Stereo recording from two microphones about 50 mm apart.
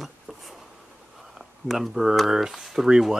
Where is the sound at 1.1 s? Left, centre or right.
Centre.